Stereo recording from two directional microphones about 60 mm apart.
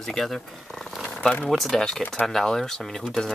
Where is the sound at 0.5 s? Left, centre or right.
Centre.